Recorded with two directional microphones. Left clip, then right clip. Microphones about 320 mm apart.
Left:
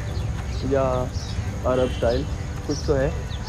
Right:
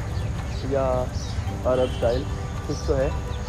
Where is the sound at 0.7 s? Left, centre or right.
Left.